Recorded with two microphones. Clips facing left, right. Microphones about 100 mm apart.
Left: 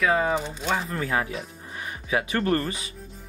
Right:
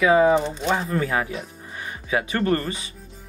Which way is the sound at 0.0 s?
5° right (ahead or behind).